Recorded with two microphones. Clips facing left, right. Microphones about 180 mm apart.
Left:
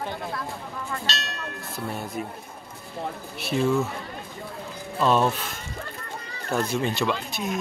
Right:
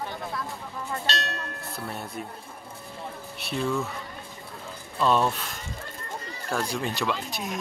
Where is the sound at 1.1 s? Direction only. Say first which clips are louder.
Right 2 dB; 55° right (ahead or behind).